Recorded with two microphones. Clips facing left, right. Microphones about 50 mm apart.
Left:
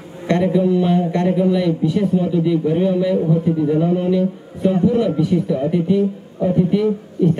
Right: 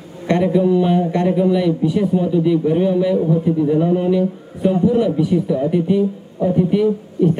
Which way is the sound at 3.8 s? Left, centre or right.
Right.